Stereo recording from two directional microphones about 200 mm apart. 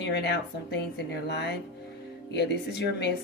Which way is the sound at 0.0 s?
55° left (ahead or behind).